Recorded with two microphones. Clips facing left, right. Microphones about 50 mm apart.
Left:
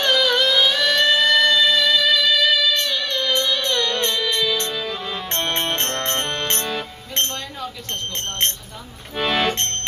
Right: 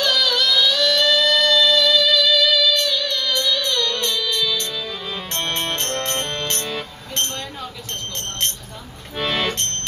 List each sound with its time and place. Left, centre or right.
0.0 s music: left
4.7 s music: centre
5.3 s music: left
9.1 s accordion: centre